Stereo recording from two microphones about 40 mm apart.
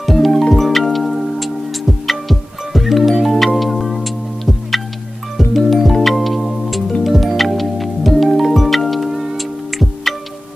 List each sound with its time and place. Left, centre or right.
0.0 s music: centre